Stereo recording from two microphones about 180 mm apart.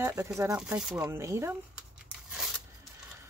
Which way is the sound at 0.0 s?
15° right (ahead or behind).